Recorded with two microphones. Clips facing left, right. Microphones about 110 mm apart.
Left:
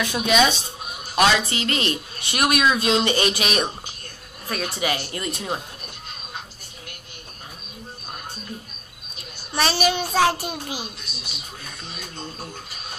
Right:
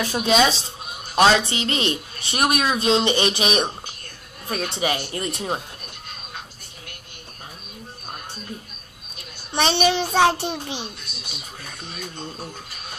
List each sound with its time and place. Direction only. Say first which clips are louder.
0.0 s speech: right 1 dB; 30° right (ahead or behind)
9.5 s speech: right 2 dB; 25° right (ahead or behind)